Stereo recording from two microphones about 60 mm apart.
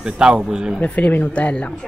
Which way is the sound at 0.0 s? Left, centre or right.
Centre.